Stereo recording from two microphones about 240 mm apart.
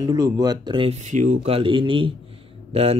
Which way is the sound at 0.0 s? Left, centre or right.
Centre.